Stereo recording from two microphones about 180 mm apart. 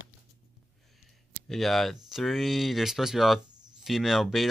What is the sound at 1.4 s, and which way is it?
Speech, centre (ahead or behind).